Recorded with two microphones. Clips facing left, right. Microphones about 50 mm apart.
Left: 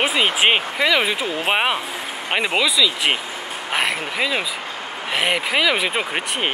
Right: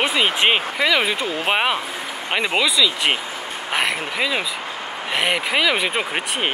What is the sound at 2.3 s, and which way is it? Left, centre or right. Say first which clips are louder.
Speech: left 1 dB; left.